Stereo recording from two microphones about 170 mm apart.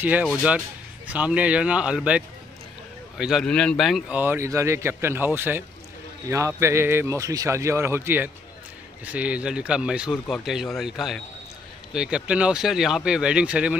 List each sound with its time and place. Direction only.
0.0 s a man's voice: 10° right (ahead or behind)
4.2 s a man's voice: 15° right (ahead or behind)